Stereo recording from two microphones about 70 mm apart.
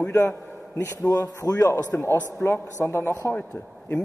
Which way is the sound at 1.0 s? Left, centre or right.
Left.